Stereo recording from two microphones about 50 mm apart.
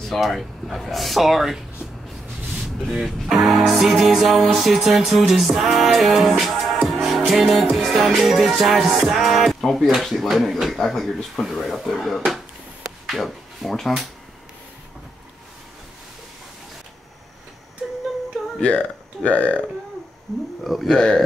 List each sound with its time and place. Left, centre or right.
0.0 s music: centre
3.3 s music: centre
13.0 s speech: centre
18.6 s speech: left
20.3 s music: centre
20.9 s speech: centre